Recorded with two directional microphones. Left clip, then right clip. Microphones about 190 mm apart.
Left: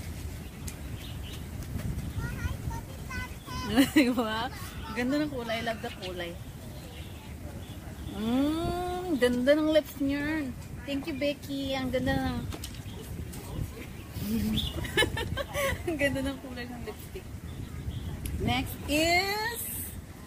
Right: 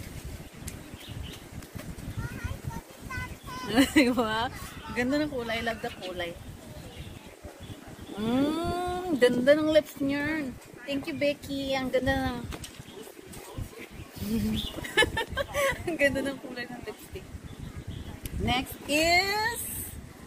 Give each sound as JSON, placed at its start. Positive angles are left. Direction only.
{"t": 3.7, "sound": "a woman's voice", "side_deg": -10}
{"t": 8.2, "sound": "a woman's voice", "side_deg": -15}
{"t": 14.8, "sound": "a sound", "side_deg": -15}
{"t": 18.4, "sound": "speech", "side_deg": -15}